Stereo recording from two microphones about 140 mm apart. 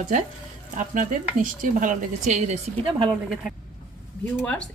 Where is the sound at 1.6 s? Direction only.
70° right (ahead or behind).